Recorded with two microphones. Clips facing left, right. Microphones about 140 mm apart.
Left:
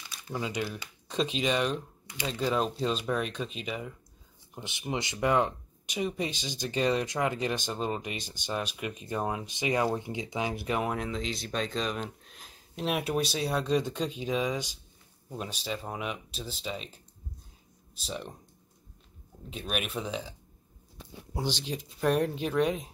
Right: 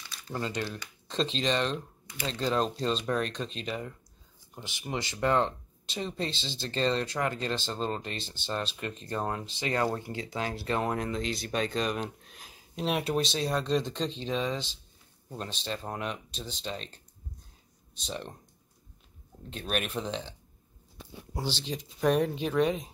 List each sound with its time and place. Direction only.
0.3 s speech: 10° left (ahead or behind)
4.6 s speech: 20° left (ahead or behind); by 18.3 s centre (ahead or behind)
19.7 s speech: 5° left (ahead or behind)